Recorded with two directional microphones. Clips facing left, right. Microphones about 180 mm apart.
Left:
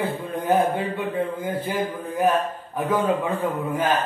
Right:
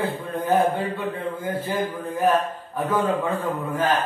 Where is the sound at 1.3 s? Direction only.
15° left (ahead or behind).